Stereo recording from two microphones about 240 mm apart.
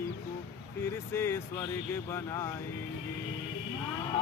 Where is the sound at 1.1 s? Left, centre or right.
Centre.